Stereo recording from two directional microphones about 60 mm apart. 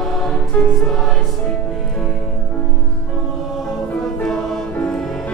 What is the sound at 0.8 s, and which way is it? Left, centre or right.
Music, centre.